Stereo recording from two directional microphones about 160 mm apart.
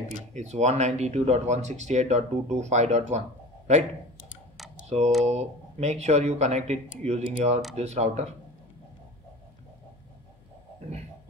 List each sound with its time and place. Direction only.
0.3 s speech: 45° right (ahead or behind)
4.8 s speech: 45° right (ahead or behind)